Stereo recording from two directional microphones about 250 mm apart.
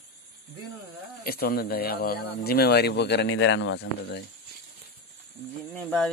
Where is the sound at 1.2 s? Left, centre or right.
Left.